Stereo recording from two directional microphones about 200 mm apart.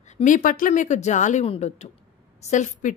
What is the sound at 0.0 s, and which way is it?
A woman's voice, 35° left (ahead or behind).